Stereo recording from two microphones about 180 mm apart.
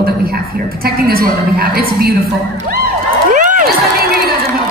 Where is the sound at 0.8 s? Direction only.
55° right (ahead or behind).